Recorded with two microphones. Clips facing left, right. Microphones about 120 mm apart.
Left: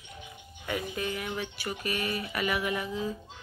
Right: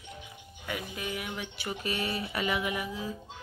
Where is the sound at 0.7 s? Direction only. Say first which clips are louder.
Left 3 dB; 5° right (ahead or behind).